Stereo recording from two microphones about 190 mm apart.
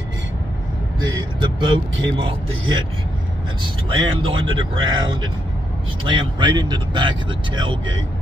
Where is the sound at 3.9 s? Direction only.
25° right (ahead or behind).